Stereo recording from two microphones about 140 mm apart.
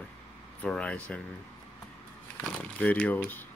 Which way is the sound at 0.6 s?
10° left (ahead or behind).